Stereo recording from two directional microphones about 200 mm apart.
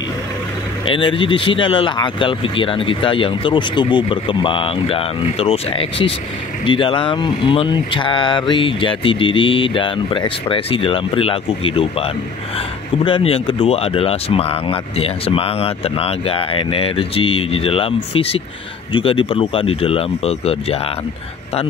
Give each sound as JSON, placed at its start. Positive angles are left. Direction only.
{"t": 0.8, "sound": "speech", "side_deg": 25}